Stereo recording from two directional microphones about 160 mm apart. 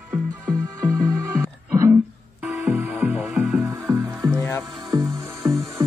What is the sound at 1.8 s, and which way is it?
Music, 10° right (ahead or behind).